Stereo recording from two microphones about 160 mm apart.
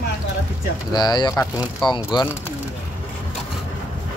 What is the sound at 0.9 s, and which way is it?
Speech, 25° left (ahead or behind).